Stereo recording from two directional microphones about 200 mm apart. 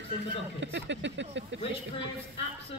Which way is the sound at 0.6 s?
65° right (ahead or behind).